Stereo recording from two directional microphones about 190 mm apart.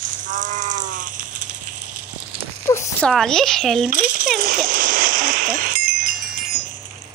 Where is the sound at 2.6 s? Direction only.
15° left (ahead or behind).